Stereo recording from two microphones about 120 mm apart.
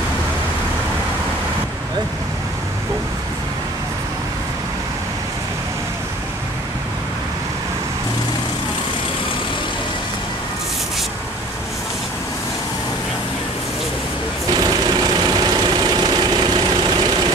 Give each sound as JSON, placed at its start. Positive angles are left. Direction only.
{"t": 14.5, "sound": "vehicle", "side_deg": -35}